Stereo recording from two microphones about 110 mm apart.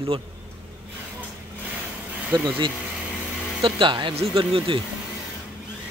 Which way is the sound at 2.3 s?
40° right (ahead or behind).